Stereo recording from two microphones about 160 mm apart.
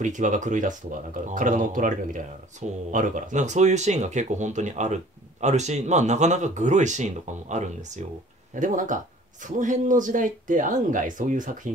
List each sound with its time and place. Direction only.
0.0 s speech: 50° right (ahead or behind)